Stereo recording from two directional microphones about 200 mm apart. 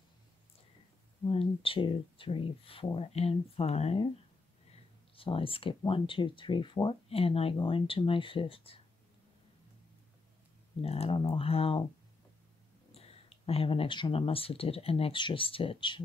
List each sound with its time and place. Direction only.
1.2 s speech: 30° left (ahead or behind)
5.1 s speech: 25° left (ahead or behind)
10.8 s speech: 30° left (ahead or behind)
12.9 s speech: 30° left (ahead or behind)